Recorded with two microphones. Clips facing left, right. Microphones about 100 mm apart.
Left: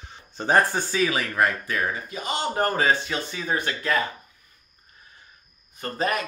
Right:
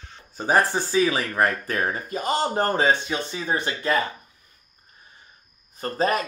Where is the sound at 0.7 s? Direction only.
25° right (ahead or behind).